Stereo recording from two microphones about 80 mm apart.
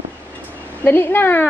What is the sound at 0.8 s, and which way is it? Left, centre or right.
Speech, left.